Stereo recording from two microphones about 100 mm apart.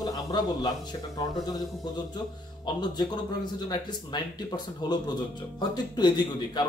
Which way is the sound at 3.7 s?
45° left (ahead or behind).